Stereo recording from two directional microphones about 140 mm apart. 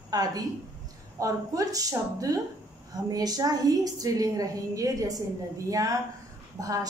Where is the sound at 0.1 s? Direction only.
25° right (ahead or behind).